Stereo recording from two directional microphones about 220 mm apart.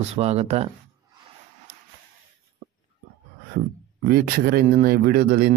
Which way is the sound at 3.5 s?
45° right (ahead or behind).